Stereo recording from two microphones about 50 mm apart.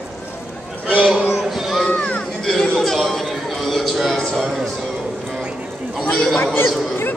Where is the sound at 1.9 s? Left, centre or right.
Left.